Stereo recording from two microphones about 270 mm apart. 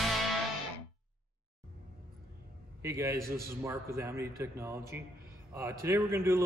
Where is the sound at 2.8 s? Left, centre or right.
Centre.